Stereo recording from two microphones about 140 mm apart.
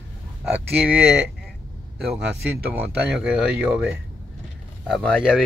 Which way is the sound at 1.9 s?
10° right (ahead or behind).